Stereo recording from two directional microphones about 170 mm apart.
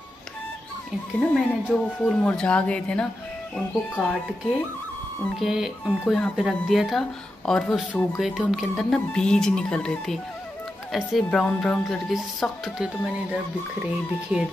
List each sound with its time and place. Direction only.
1.2 s speech: 5° left (ahead or behind)
5.2 s speech: centre (ahead or behind)
8.2 s speech: centre (ahead or behind)
14.3 s speech: 10° right (ahead or behind)